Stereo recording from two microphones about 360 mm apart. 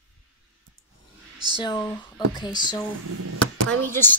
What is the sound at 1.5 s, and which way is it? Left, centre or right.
Speech, centre.